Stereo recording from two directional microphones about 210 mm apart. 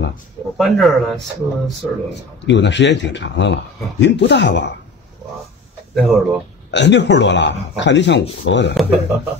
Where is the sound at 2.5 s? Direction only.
60° left (ahead or behind).